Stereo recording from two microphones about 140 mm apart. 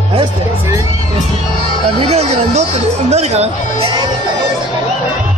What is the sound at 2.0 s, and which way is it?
Speech, 50° right (ahead or behind).